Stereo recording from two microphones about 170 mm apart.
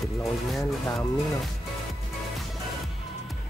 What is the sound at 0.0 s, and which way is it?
Speech, centre (ahead or behind).